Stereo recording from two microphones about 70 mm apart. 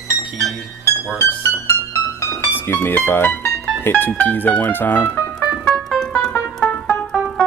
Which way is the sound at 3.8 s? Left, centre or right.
Left.